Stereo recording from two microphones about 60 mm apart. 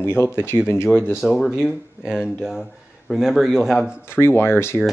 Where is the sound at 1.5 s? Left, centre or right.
Centre.